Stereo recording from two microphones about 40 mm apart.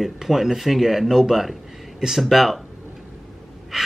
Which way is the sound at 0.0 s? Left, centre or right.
Centre.